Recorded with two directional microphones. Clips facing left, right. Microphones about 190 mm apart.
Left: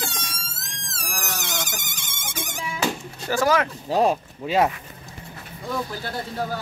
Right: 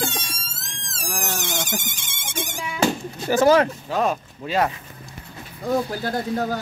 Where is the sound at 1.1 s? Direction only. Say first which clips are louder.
Right 4 dB; 25° right (ahead or behind).